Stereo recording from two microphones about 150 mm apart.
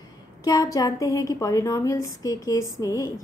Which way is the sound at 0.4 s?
25° left (ahead or behind).